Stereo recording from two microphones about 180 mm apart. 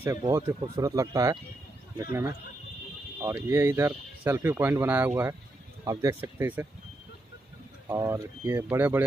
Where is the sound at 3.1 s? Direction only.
15° right (ahead or behind).